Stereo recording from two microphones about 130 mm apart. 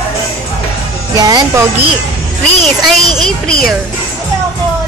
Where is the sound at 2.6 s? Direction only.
5° left (ahead or behind).